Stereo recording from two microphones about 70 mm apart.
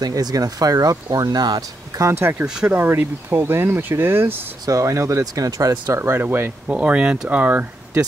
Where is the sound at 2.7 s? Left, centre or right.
Right.